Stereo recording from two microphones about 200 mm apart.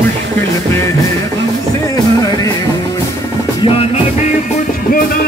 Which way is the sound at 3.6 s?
30° left (ahead or behind).